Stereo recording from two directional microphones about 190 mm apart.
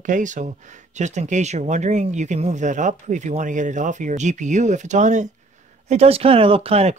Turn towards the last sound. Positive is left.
turn(degrees=-35)  # may be behind; listen again after turning